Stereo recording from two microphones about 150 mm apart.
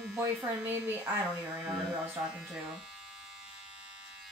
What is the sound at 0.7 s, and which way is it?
A woman's voice, 10° right (ahead or behind).